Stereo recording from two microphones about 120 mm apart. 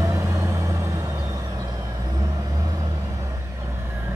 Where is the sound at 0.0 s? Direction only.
25° right (ahead or behind).